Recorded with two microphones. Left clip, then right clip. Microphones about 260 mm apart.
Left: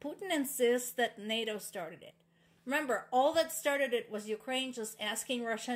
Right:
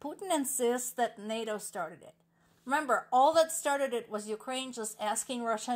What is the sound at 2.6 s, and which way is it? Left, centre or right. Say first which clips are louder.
Speech: right 4 dB; centre.